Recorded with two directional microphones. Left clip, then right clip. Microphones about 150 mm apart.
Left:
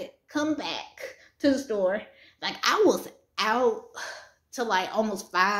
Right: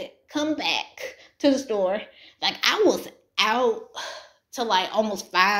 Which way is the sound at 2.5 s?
15° left (ahead or behind).